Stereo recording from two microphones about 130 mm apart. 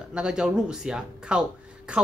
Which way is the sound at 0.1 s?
5° right (ahead or behind).